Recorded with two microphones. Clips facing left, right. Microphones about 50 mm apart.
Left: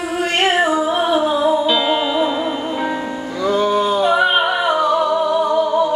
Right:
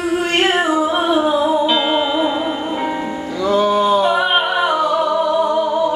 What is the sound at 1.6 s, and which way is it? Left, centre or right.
Music, centre.